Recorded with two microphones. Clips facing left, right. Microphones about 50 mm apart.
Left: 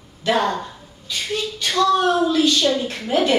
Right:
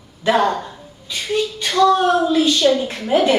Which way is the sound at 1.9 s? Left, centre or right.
Centre.